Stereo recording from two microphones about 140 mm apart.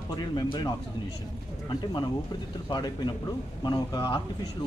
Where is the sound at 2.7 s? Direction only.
35° left (ahead or behind).